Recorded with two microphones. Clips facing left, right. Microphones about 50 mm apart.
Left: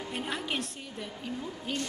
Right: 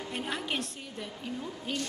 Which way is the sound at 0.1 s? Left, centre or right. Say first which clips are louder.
Even; centre.